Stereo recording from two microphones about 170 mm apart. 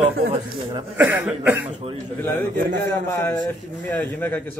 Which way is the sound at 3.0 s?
15° left (ahead or behind).